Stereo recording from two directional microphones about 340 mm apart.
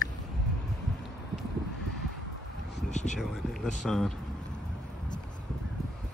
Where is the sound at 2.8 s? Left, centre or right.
Left.